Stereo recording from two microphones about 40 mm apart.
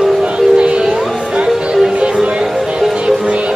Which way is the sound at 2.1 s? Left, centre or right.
Right.